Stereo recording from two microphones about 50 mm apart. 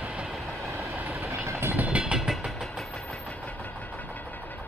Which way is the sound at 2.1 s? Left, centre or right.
Centre.